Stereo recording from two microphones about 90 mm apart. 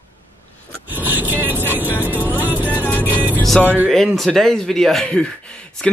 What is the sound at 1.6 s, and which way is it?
Vehicle, 20° right (ahead or behind).